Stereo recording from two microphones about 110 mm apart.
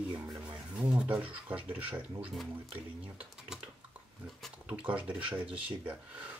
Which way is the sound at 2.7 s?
10° right (ahead or behind).